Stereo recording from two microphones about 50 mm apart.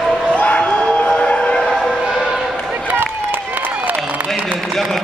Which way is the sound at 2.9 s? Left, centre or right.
Right.